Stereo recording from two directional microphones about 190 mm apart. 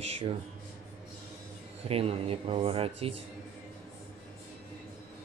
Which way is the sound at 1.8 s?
30° right (ahead or behind).